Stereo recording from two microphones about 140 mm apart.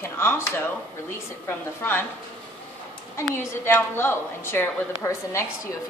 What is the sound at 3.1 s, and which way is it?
A woman's voice, 15° left (ahead or behind).